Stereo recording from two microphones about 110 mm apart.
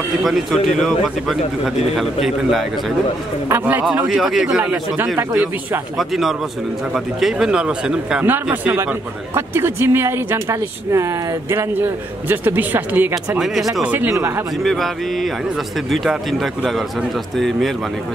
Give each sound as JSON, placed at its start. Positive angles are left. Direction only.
{"t": 0.2, "sound": "speech", "side_deg": 0}
{"t": 3.4, "sound": "a man's voice", "side_deg": -20}
{"t": 4.1, "sound": "speech", "side_deg": 0}
{"t": 5.0, "sound": "speech", "side_deg": -30}
{"t": 5.9, "sound": "speech", "side_deg": 0}
{"t": 9.3, "sound": "a man's voice", "side_deg": -20}
{"t": 14.6, "sound": "speech", "side_deg": 0}
{"t": 15.9, "sound": "speech", "side_deg": 0}